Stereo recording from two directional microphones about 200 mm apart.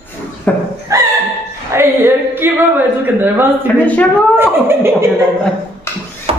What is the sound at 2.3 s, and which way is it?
Speech, 10° right (ahead or behind).